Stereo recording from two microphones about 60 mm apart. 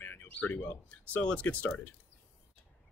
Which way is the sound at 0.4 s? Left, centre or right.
Left.